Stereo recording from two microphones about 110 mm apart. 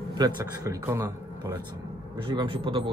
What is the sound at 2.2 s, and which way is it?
Speech, 50° right (ahead or behind).